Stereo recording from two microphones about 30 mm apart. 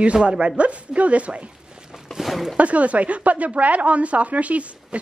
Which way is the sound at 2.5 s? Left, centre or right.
Right.